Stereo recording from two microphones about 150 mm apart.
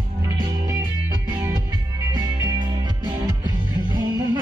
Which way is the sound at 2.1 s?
30° right (ahead or behind).